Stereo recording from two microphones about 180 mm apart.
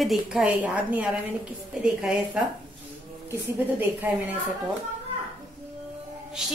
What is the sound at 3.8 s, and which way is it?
Speech, 10° right (ahead or behind).